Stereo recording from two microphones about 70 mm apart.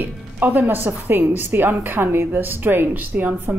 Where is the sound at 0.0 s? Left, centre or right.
Right.